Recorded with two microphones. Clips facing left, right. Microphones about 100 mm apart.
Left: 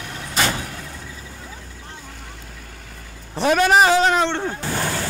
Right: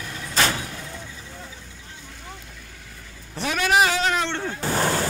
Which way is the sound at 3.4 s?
40° left (ahead or behind).